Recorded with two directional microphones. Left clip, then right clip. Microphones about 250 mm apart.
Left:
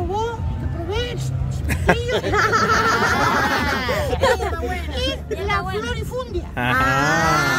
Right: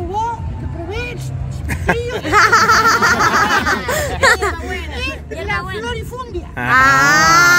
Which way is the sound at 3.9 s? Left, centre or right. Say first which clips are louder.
Right 6 dB; right.